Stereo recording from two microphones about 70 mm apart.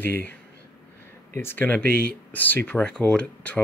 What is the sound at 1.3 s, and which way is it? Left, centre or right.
Speech, left.